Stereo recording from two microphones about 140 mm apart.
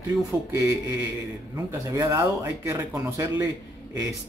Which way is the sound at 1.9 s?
20° right (ahead or behind).